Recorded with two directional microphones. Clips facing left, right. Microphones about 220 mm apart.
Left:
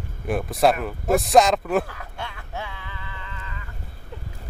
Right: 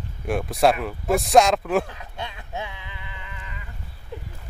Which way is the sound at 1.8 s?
20° right (ahead or behind).